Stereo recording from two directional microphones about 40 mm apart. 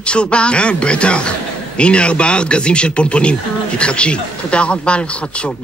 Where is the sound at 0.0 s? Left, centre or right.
Left.